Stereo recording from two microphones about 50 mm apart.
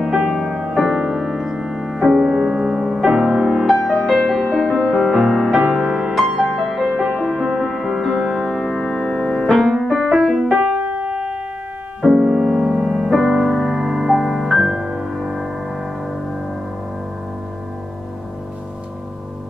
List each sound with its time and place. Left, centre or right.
0.3 s music: centre
6.3 s music: centre
10.6 s piano: right
12.0 s music: centre
12.9 s music: centre